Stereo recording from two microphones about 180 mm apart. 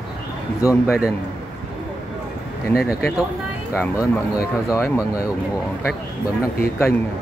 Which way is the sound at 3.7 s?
15° left (ahead or behind).